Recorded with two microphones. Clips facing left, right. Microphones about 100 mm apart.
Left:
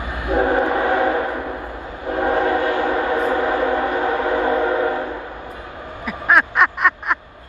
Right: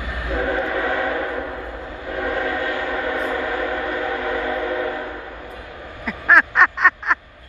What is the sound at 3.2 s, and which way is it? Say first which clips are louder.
Train: left 5 dB; 25° left (ahead or behind).